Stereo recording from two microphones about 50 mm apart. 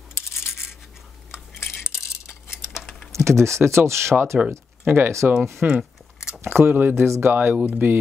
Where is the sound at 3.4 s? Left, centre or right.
Right.